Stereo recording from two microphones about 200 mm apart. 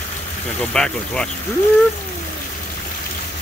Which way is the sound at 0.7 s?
5° left (ahead or behind).